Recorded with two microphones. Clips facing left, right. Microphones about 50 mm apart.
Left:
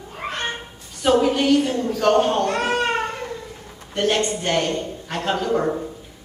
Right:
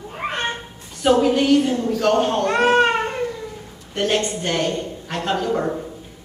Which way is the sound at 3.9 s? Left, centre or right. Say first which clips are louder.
Even; centre.